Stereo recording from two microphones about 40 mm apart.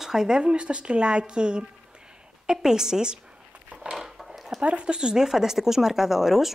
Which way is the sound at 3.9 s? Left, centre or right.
Centre.